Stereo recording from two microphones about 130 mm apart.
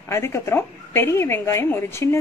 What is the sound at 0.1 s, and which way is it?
A woman's voice, 20° left (ahead or behind).